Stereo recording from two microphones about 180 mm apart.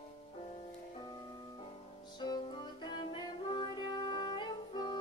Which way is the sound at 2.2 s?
25° left (ahead or behind).